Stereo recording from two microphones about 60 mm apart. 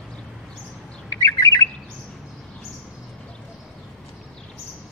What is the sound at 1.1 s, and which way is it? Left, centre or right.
Bird, left.